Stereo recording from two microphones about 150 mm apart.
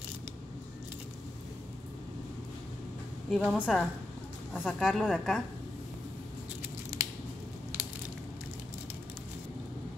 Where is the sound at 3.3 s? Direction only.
Centre (ahead or behind).